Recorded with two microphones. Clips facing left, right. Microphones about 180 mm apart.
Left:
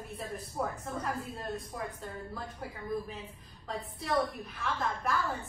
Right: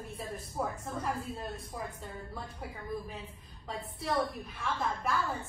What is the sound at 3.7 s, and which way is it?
A woman's voice, centre (ahead or behind).